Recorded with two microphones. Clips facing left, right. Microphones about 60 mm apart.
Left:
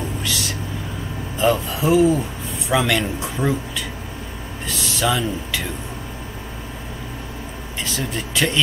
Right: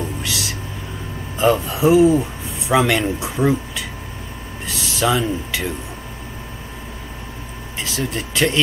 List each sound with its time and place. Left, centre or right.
0.2 s a sound: centre
1.4 s speech: centre
7.8 s speech: centre